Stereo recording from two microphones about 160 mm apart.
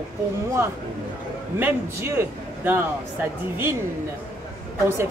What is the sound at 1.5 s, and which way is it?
A man's voice, 15° right (ahead or behind).